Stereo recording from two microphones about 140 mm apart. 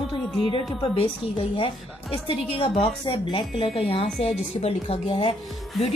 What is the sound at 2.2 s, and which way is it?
A woman's voice, 40° left (ahead or behind).